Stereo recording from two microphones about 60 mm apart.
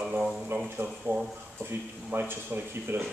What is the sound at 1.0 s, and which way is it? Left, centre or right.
Speech, right.